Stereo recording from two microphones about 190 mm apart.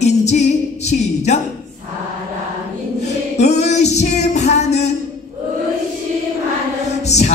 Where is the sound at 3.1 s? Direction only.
35° left (ahead or behind).